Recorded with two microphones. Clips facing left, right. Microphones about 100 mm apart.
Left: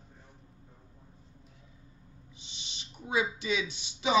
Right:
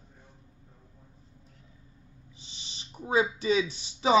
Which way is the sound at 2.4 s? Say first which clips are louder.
Even; 40° right (ahead or behind).